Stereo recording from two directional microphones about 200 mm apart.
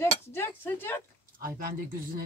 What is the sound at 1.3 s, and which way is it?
Speech, 45° right (ahead or behind).